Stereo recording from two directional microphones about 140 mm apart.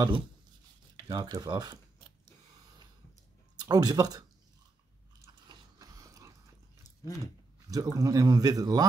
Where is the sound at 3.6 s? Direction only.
30° right (ahead or behind).